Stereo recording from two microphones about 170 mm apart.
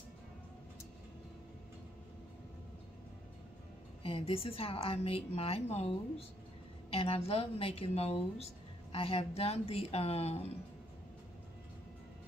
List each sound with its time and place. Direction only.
4.0 s a woman's voice: 35° left (ahead or behind)